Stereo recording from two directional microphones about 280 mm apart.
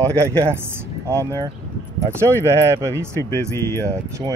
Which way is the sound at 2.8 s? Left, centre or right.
Centre.